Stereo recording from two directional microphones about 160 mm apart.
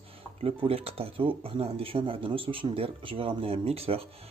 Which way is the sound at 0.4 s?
35° right (ahead or behind).